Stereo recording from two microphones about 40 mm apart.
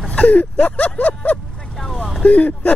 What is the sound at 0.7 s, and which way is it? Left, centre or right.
Speech, left.